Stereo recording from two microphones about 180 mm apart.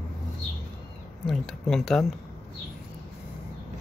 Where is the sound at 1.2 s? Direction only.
Centre (ahead or behind).